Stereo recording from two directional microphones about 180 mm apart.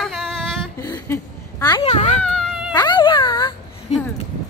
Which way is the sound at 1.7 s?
35° left (ahead or behind).